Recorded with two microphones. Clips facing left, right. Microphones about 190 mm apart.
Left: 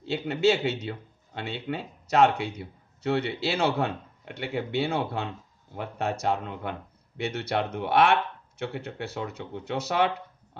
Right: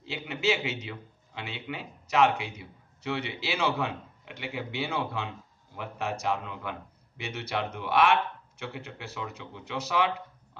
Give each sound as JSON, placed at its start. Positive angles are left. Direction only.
{"t": 0.0, "sound": "speech", "side_deg": 55}
{"t": 2.0, "sound": "speech", "side_deg": 60}